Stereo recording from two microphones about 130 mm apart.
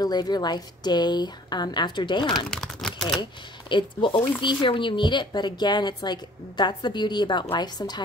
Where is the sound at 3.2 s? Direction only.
35° left (ahead or behind).